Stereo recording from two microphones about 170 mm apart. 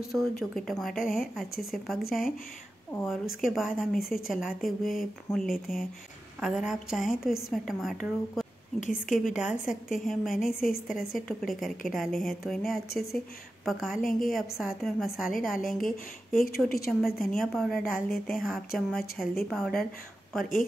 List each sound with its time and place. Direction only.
0.1 s a woman's voice: centre (ahead or behind)
8.7 s a woman's voice: 50° left (ahead or behind)
9.3 s a woman's voice: 5° right (ahead or behind)
16.3 s a woman's voice: 60° left (ahead or behind)
17.0 s a woman's voice: centre (ahead or behind)